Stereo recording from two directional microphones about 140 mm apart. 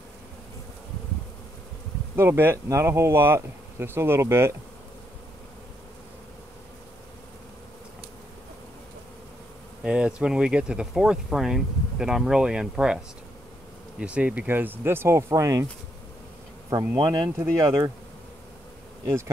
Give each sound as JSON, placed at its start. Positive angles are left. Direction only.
{"t": 2.1, "sound": "speech", "side_deg": -15}
{"t": 9.8, "sound": "speech", "side_deg": -10}
{"t": 16.9, "sound": "speech", "side_deg": -30}
{"t": 17.4, "sound": "speech", "side_deg": -20}
{"t": 19.0, "sound": "speech", "side_deg": -20}